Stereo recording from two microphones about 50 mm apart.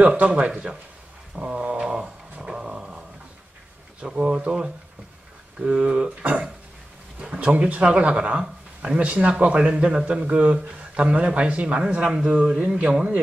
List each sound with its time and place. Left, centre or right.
0.1 s speech: right
1.3 s a sound: right
2.3 s dog: centre
4.0 s speech: right
5.7 s speech: centre
7.2 s speech: right